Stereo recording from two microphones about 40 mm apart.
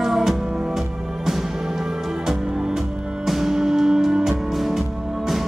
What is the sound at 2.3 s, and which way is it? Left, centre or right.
Music, centre.